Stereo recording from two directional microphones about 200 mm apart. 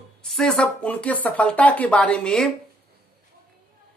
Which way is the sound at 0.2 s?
Centre (ahead or behind).